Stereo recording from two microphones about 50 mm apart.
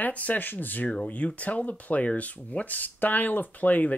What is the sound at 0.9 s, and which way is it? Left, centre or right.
Speech, left.